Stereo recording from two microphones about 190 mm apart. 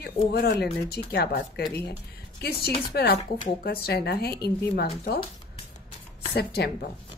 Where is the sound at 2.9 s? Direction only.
55° left (ahead or behind).